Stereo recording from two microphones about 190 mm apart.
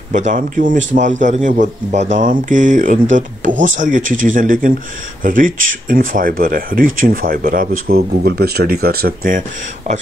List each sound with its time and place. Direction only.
0.1 s a man's voice: 40° right (ahead or behind)